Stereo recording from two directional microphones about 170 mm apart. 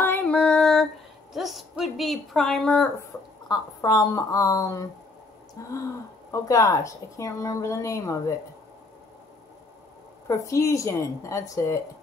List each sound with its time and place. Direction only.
0.0 s female singing: 10° left (ahead or behind)
1.3 s a woman's voice: centre (ahead or behind)
3.4 s a woman's voice: 20° left (ahead or behind)
10.2 s speech: 15° left (ahead or behind)